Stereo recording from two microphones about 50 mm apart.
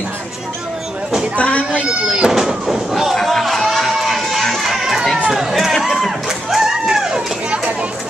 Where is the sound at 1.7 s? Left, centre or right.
Right; by 5.0 s centre.